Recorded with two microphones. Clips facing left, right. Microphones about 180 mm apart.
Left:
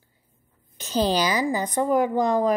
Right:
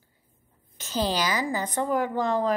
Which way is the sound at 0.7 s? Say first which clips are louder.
Left 4 dB; 20° left (ahead or behind).